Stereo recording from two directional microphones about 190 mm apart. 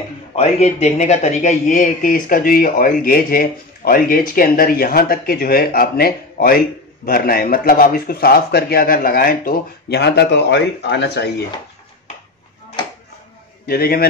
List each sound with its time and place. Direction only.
0.4 s speech: 35° left (ahead or behind); by 11.4 s 60° left (ahead or behind)
13.7 s speech: 50° left (ahead or behind)